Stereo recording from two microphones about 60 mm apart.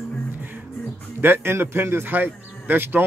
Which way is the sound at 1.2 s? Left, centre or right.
Right.